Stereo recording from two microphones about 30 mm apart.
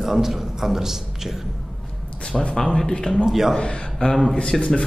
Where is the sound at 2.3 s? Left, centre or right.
Centre.